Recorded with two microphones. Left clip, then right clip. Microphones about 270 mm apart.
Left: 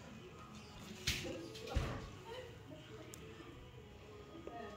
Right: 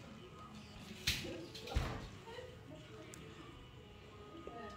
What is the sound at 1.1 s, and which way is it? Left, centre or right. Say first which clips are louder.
Music: right 2 dB; right.